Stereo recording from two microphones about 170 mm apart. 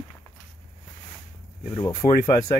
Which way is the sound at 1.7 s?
30° left (ahead or behind).